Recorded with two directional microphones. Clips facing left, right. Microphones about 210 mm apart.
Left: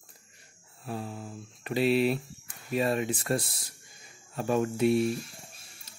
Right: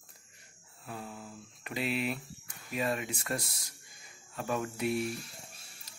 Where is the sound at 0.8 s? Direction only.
30° left (ahead or behind).